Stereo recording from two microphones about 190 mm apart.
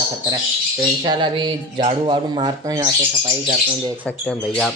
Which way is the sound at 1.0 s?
25° right (ahead or behind).